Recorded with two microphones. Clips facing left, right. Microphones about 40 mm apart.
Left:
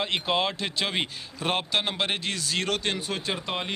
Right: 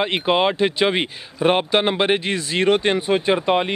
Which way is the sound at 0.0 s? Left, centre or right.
Right.